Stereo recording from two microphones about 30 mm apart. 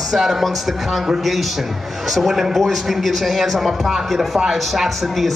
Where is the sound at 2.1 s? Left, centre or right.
Centre.